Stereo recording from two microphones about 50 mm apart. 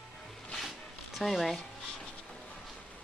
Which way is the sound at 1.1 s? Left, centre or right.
Centre.